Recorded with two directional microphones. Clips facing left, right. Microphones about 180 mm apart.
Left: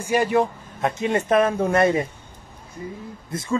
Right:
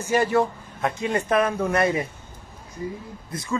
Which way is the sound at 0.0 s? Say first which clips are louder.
Left 1 dB; 15° left (ahead or behind).